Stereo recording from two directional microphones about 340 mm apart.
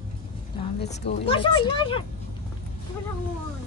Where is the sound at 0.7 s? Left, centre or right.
Left.